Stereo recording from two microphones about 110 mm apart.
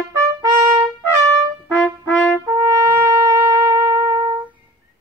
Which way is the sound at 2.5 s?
25° right (ahead or behind).